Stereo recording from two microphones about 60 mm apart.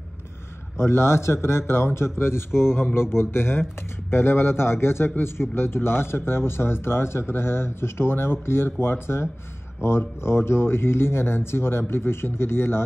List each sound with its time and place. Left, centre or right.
0.7 s speech: left